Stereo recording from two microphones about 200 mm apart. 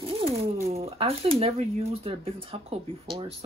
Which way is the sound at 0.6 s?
30° right (ahead or behind).